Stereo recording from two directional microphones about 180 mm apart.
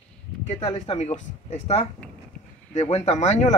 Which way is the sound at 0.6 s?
35° left (ahead or behind).